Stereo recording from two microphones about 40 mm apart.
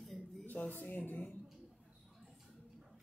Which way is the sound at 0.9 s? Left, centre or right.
Left.